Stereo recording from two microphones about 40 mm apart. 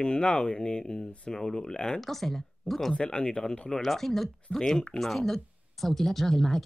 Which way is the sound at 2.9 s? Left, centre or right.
Left.